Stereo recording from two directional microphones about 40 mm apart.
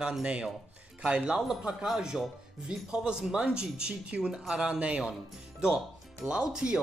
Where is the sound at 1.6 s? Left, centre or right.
Centre.